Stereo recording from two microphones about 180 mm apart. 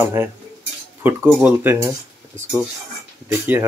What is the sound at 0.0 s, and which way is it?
Speech, 15° right (ahead or behind).